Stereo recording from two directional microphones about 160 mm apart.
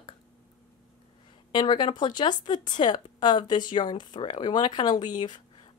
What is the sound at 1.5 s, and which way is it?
A woman's voice, 30° left (ahead or behind).